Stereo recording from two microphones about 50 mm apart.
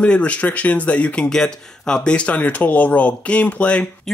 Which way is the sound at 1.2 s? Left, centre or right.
Centre.